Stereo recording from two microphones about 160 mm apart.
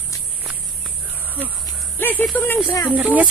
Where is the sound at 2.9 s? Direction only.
10° right (ahead or behind).